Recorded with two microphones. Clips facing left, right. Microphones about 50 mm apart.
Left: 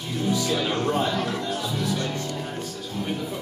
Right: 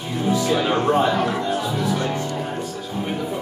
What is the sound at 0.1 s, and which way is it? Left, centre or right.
Music, centre.